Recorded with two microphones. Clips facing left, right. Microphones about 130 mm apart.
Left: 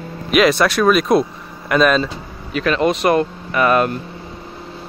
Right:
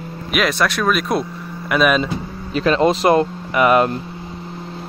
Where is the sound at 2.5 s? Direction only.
30° right (ahead or behind).